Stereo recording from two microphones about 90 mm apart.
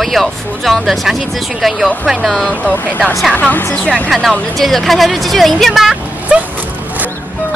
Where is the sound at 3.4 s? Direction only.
15° left (ahead or behind).